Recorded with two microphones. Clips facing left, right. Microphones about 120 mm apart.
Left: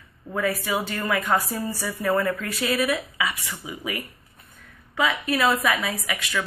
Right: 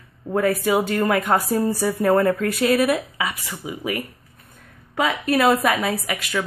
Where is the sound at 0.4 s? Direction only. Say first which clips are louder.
Right 6 dB; 50° right (ahead or behind).